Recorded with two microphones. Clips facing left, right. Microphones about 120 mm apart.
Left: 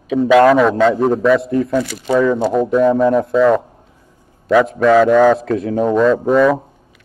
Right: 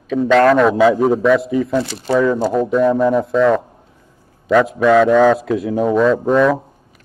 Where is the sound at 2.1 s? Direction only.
Centre (ahead or behind).